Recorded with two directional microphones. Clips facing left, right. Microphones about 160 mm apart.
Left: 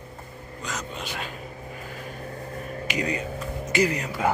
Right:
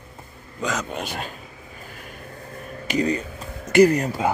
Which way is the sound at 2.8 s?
35° right (ahead or behind).